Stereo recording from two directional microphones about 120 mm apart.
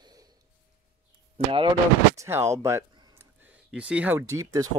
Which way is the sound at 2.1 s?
20° right (ahead or behind).